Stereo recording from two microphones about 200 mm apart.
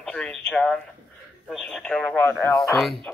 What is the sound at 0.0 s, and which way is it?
Speech, 5° left (ahead or behind).